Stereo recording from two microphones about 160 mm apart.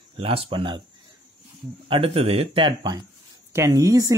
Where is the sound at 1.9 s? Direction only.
35° right (ahead or behind).